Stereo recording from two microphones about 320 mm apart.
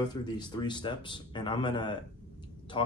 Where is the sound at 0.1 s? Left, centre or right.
Centre.